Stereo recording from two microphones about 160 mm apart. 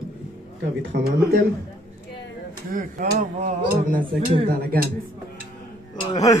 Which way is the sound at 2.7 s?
60° right (ahead or behind).